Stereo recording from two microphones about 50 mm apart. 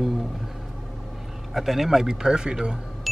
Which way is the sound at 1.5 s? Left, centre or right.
Centre.